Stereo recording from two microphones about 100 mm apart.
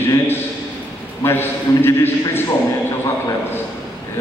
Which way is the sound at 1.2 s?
20° left (ahead or behind).